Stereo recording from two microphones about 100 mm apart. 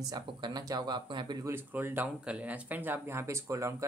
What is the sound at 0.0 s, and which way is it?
Speech, 45° right (ahead or behind).